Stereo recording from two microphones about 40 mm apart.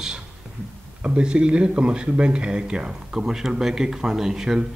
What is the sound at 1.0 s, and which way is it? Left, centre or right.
Speech, right.